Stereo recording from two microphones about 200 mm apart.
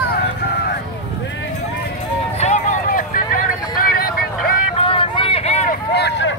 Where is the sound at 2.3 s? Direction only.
35° left (ahead or behind).